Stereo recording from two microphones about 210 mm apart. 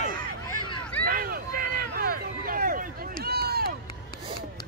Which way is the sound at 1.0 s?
45° right (ahead or behind).